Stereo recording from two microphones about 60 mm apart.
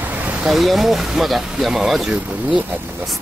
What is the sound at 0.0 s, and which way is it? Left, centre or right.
Vehicle, right.